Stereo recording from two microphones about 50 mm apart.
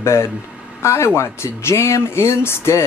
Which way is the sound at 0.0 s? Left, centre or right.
Left.